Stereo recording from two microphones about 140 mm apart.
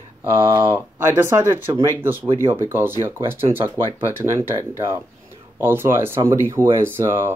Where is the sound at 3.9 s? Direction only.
20° right (ahead or behind).